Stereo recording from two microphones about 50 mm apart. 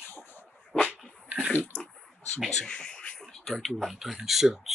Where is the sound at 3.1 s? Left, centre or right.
Centre.